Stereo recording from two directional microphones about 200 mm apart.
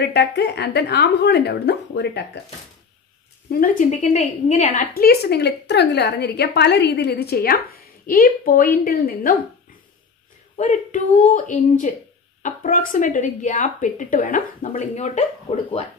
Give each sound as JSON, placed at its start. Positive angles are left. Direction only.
{"t": 0.0, "sound": "a woman's voice", "side_deg": 55}
{"t": 3.4, "sound": "speech", "side_deg": 45}
{"t": 4.9, "sound": "a woman's voice", "side_deg": 50}
{"t": 10.6, "sound": "speech", "side_deg": 40}